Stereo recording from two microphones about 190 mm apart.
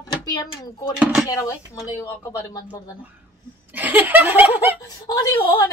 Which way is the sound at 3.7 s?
10° right (ahead or behind).